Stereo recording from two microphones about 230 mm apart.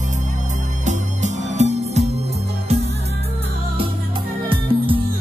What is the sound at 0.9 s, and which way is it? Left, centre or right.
Music, right.